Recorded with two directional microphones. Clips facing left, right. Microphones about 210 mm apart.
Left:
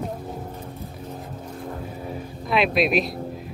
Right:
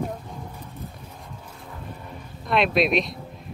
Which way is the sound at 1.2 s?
45° left (ahead or behind).